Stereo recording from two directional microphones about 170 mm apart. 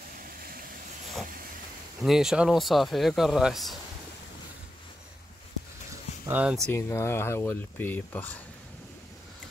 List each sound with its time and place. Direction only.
0.2 s vehicle: 55° right (ahead or behind)
2.0 s speech: 5° right (ahead or behind)
5.9 s a sound: 10° right (ahead or behind)
6.7 s speech: 15° left (ahead or behind)